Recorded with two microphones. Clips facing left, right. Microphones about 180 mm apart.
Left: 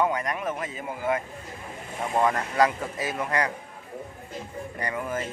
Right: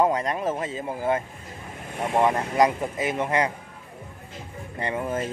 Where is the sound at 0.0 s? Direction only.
30° right (ahead or behind).